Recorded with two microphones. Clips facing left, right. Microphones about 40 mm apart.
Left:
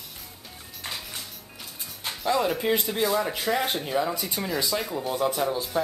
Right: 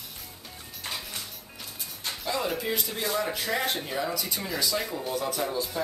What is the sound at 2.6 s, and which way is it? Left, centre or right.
Speech, left.